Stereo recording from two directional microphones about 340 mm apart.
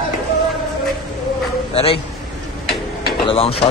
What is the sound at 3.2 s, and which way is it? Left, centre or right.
Speech, centre.